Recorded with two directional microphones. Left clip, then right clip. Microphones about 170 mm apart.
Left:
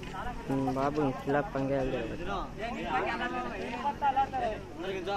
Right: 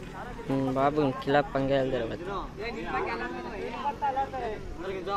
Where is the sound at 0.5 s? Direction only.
20° right (ahead or behind).